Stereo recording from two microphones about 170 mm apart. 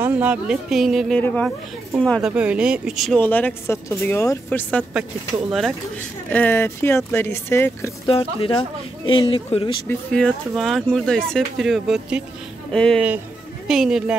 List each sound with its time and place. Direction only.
0.0 s speech: 10° right (ahead or behind)
6.3 s speech: 10° left (ahead or behind)
8.1 s speech: 35° left (ahead or behind)
9.8 s speech: 5° left (ahead or behind)